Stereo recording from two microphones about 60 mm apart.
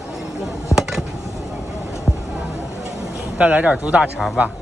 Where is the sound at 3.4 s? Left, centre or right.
Right.